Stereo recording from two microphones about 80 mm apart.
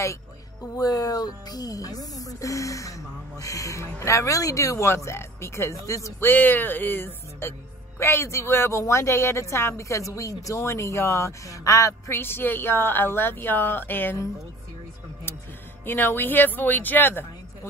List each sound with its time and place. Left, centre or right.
0.7 s speech: left
6.2 s a woman's voice: left
12.2 s a woman's voice: left
15.8 s a woman's voice: left